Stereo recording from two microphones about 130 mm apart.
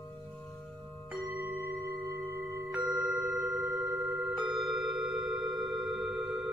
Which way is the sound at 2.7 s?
10° right (ahead or behind).